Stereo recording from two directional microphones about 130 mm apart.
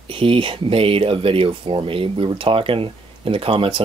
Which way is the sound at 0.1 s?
45° right (ahead or behind).